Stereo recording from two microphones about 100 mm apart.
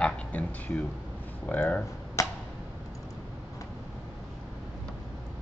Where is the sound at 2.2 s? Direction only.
30° left (ahead or behind).